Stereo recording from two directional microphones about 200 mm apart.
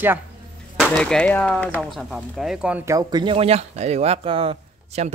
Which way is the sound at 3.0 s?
20° right (ahead or behind).